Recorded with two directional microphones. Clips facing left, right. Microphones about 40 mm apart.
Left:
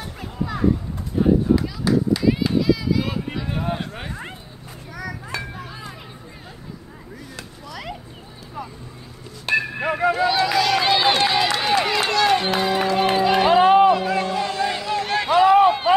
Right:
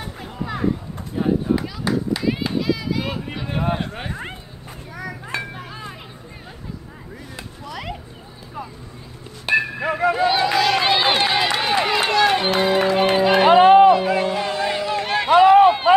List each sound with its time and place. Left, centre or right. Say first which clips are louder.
0.0 s a sound: left 1 dB; right
1.2 s run: left 2 dB; right
3.9 s a sound: right 2 dB; right
4.9 s children playing: right 1 dB; right
7.6 s a sound: right 3 dB; right
9.5 s music: right 2 dB; centre
10.1 s run: right 1 dB; centre
12.5 s music: right 2 dB; right
13.9 s music: right 2 dB; centre
14.2 s music: right 1 dB; right
14.9 s a sound: right 1 dB; centre
15.2 s run: right 3 dB; right